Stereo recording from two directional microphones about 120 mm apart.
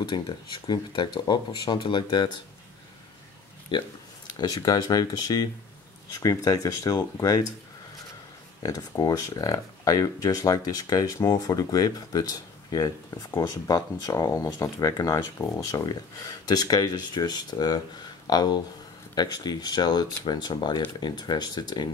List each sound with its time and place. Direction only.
0.1 s speech: 45° left (ahead or behind)
3.7 s speech: 40° left (ahead or behind)
8.6 s speech: 30° left (ahead or behind)